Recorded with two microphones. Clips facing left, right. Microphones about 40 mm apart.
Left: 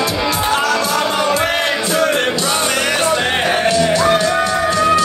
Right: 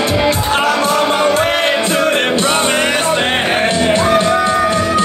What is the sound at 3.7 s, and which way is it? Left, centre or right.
Music, right.